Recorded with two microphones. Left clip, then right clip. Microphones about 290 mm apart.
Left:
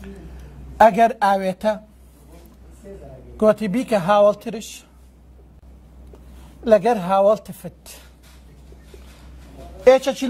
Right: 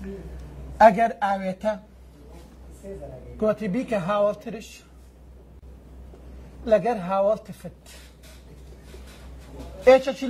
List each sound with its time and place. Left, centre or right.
0.7 s a man's voice: centre
3.3 s a man's voice: left
6.6 s a man's voice: centre
9.8 s a man's voice: left